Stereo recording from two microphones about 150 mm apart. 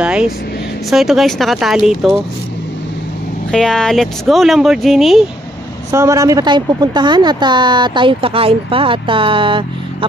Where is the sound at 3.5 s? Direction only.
5° left (ahead or behind).